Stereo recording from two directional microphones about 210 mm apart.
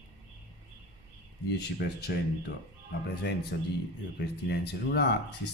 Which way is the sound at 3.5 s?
50° left (ahead or behind).